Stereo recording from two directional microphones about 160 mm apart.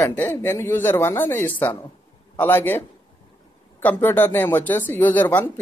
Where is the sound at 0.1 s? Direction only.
10° left (ahead or behind).